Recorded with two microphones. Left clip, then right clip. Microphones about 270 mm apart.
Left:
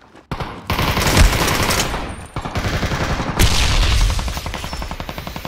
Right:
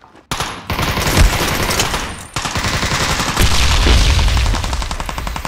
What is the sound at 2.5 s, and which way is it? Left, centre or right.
Machine gun, centre.